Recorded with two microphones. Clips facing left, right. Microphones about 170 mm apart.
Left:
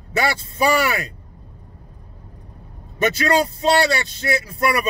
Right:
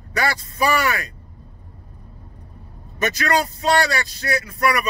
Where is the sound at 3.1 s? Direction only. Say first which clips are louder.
Left 1 dB; 30° left (ahead or behind).